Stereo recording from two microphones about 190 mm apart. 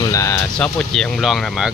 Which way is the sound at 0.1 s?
15° left (ahead or behind).